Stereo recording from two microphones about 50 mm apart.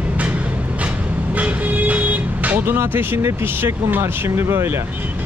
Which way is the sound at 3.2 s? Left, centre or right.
Right.